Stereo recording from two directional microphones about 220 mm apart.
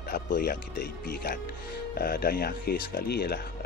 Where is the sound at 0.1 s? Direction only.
45° left (ahead or behind).